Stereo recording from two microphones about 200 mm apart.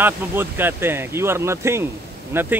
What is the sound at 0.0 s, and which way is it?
Speech, 10° right (ahead or behind).